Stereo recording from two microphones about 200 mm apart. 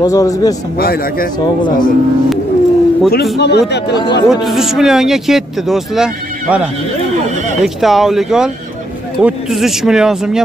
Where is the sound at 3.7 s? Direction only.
60° left (ahead or behind).